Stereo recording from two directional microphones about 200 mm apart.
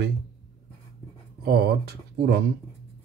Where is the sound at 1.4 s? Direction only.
50° right (ahead or behind).